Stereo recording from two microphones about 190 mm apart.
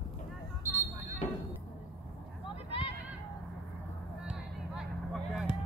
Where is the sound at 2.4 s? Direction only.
30° left (ahead or behind).